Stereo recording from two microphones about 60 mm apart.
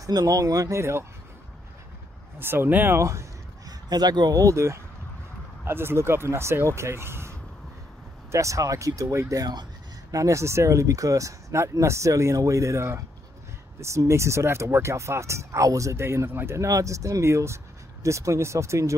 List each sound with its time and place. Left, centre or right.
0.0 s speech: right
0.7 s speech: right
2.3 s speech: right
3.0 s speech: right
3.6 s speech: right
5.7 s speech: right
8.3 s speech: right
16.5 s speech: right